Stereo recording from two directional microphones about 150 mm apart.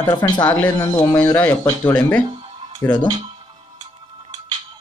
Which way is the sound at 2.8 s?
10° left (ahead or behind).